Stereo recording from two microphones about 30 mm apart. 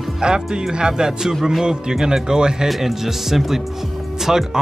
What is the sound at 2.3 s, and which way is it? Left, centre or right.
Speech, right.